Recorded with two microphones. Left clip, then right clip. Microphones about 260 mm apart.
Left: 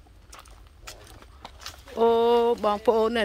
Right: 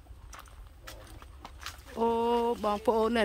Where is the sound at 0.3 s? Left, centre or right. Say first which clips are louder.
Left 2 dB; left.